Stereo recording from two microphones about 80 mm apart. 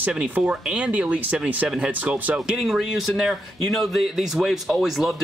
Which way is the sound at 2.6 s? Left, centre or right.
Centre.